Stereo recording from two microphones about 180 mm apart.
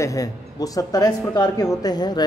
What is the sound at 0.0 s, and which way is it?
A man's voice, 20° left (ahead or behind).